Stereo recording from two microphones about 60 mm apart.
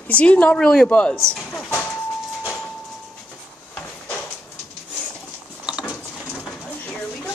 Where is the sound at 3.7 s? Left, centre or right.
Centre.